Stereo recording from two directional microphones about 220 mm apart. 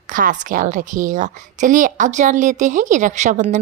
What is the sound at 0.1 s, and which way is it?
Speech, 35° right (ahead or behind).